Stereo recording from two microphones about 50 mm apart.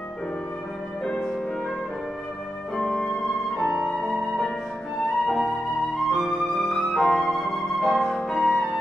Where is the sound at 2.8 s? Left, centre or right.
Centre.